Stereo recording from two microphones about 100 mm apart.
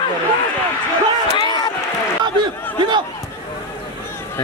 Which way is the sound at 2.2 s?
50° right (ahead or behind).